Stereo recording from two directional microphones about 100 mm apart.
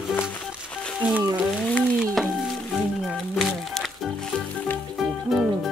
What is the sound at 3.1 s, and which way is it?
Music, 5° left (ahead or behind).